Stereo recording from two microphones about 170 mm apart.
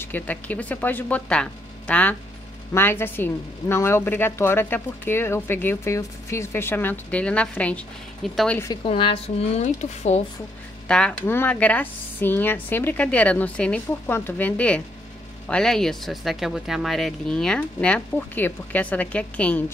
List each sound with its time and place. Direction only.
0.0 s a woman's voice: 10° left (ahead or behind)
8.8 s speech: 30° left (ahead or behind)
10.9 s a woman's voice: 5° left (ahead or behind)